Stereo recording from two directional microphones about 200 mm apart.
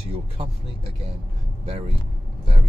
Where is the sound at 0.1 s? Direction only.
30° right (ahead or behind).